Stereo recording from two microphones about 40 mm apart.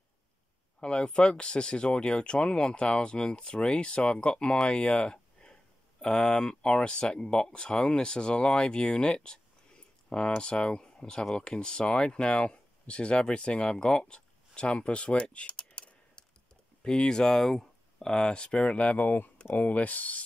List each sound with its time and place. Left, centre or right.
0.7 s speech: left
18.1 s speech: left
18.9 s speech: left